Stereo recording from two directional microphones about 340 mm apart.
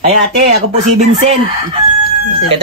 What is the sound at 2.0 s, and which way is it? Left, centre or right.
Crowing, left.